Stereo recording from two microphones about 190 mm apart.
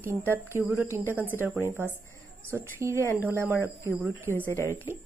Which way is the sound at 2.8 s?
15° right (ahead or behind).